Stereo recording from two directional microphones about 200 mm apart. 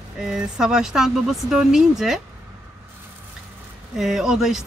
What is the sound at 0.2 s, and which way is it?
Speech, 5° right (ahead or behind).